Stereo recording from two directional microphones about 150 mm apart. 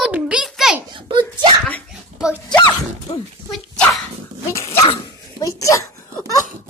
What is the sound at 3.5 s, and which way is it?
Dog, centre (ahead or behind).